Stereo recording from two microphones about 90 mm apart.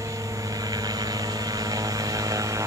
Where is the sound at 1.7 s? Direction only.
40° right (ahead or behind).